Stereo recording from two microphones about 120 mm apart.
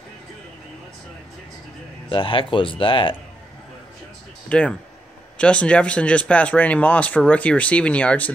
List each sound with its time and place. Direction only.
2.0 s speech: 45° left (ahead or behind)
4.5 s speech: 10° left (ahead or behind)